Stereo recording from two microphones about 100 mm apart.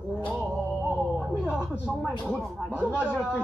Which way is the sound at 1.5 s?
10° right (ahead or behind).